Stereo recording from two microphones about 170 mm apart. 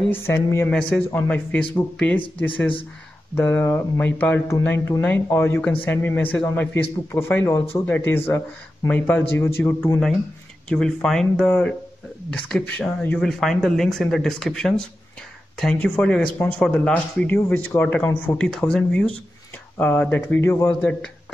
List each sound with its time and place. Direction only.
0.1 s speech: 15° left (ahead or behind)
3.3 s speech: 10° left (ahead or behind)